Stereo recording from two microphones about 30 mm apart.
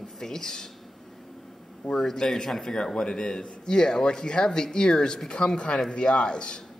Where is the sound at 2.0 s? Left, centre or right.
Centre; by 6.4 s left.